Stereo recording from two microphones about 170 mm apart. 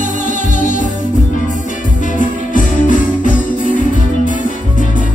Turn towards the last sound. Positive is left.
turn(degrees=50)  # may be behind; listen again after turning